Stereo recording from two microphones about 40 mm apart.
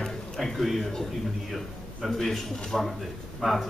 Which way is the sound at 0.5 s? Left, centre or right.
Centre.